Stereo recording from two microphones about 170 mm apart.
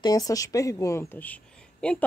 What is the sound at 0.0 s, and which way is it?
Speech, 20° left (ahead or behind).